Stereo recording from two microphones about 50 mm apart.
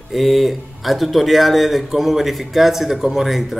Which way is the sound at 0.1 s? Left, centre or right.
Centre.